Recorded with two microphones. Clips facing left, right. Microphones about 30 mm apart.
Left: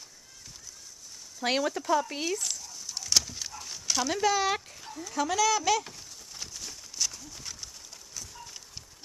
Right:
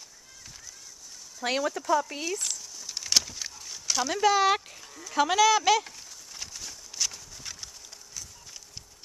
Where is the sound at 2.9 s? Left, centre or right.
Right.